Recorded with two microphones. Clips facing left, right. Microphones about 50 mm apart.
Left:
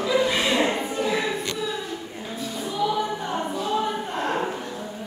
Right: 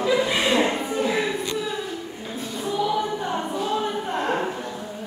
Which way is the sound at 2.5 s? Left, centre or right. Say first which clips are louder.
Right 1 dB; centre.